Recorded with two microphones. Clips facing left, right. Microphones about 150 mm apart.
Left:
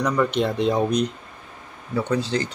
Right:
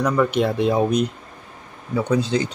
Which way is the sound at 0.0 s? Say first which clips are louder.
Right 2 dB; 5° right (ahead or behind).